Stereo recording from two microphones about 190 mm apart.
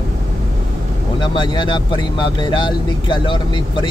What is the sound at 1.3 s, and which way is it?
Speech, 25° left (ahead or behind).